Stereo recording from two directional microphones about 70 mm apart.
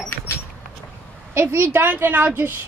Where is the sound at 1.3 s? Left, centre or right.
Right.